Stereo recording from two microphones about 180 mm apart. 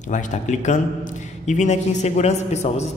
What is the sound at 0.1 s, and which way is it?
A man's voice, 40° left (ahead or behind).